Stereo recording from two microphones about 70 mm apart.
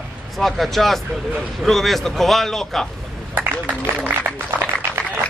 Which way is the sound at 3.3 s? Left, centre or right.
Right.